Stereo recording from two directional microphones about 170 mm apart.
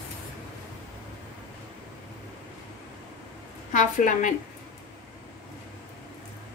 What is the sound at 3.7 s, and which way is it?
Speech, 50° left (ahead or behind).